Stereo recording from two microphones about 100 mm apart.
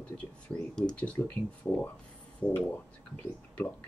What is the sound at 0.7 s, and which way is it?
Speech, 10° left (ahead or behind).